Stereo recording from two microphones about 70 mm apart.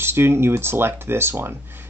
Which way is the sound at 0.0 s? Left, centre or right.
Right.